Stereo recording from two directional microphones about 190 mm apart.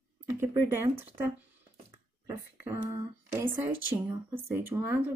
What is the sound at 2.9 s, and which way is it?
Speech, 15° right (ahead or behind).